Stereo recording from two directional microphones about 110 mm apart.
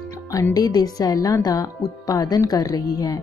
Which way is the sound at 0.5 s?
35° left (ahead or behind).